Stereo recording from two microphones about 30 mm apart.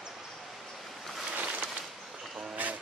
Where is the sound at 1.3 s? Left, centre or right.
Right.